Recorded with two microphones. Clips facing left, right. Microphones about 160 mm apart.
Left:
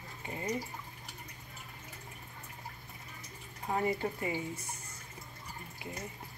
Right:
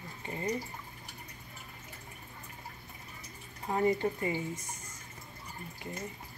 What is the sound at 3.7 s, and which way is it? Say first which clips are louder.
Speech: right 4 dB; centre (ahead or behind).